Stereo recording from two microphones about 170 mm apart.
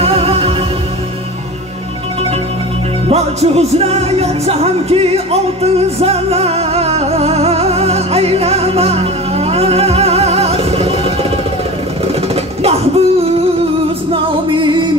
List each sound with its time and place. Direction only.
0.0 s music: 35° right (ahead or behind)
3.1 s music: 40° right (ahead or behind)
12.6 s a sound: 35° right (ahead or behind)
14.1 s music: 30° right (ahead or behind)